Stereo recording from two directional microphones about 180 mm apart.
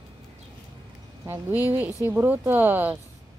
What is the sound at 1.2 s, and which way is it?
Speech, 10° right (ahead or behind).